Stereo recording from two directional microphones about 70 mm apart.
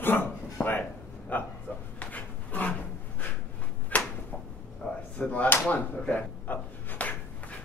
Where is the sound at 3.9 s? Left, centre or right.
Left.